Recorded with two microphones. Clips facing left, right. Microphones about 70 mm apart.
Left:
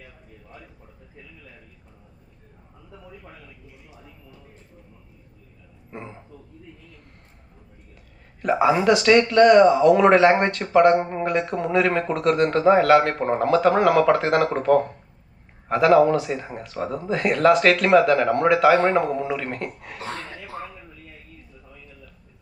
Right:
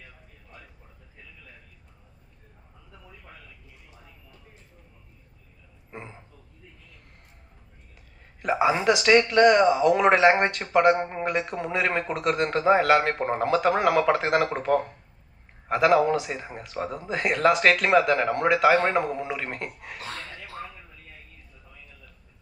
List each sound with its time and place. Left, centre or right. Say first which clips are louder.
8.5 s speech: left 4 dB; centre
11.7 s speech: left 5 dB; centre
20.0 s dog: left 5 dB; left
20.6 s a sound: left 2 dB; left